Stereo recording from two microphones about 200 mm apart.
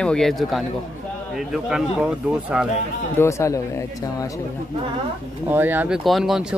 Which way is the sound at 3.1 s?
15° left (ahead or behind).